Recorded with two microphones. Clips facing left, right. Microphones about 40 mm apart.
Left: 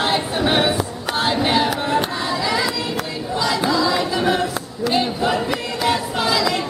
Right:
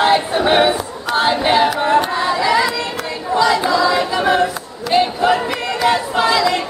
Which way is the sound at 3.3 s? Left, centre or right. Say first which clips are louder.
Right 5 dB; centre.